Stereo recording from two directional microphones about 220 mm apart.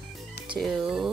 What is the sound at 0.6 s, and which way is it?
Speech, centre (ahead or behind).